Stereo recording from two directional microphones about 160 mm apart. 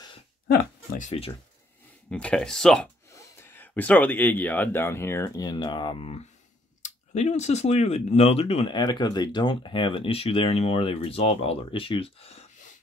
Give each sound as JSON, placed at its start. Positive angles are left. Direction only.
{"t": 0.9, "sound": "speech", "side_deg": 45}
{"t": 2.0, "sound": "speech", "side_deg": 5}
{"t": 3.1, "sound": "speech", "side_deg": 15}